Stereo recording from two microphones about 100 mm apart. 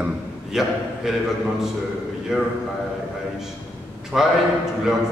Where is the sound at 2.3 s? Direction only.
5° right (ahead or behind).